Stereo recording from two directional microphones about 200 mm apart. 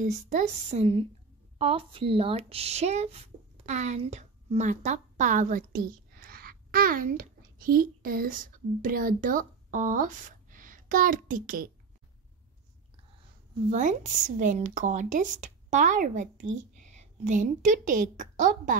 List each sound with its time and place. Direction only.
0.0 s speech: 35° right (ahead or behind)
13.7 s speech: 40° right (ahead or behind)